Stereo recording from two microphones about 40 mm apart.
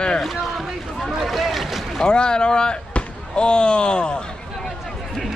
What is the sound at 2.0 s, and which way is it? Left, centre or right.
Speech, left.